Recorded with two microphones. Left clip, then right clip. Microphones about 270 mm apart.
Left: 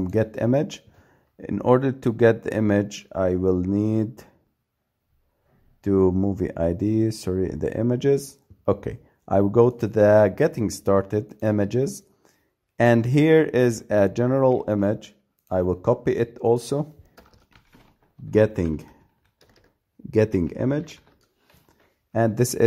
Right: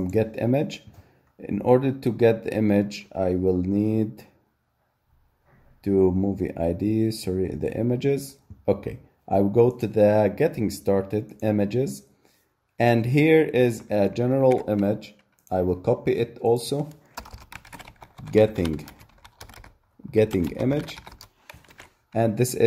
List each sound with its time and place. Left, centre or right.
0.1 s speech: left
5.8 s speech: left
18.3 s speech: left
20.1 s speech: left
22.1 s speech: left